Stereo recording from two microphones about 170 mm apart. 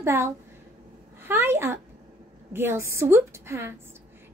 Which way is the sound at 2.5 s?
15° right (ahead or behind).